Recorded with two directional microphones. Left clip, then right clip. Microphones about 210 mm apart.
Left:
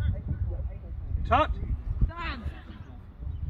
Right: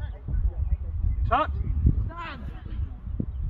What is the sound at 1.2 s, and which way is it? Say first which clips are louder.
Speech: even; 30° left (ahead or behind).